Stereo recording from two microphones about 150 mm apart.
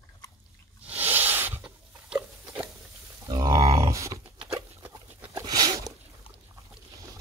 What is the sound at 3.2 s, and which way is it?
Grunt, 25° right (ahead or behind).